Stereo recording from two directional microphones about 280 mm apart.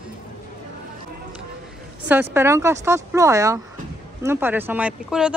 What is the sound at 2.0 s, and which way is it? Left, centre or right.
Speech, centre.